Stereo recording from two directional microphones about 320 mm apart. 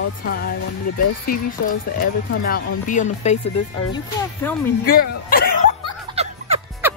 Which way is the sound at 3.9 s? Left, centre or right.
Centre.